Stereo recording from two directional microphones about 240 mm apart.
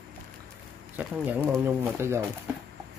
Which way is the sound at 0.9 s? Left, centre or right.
Centre.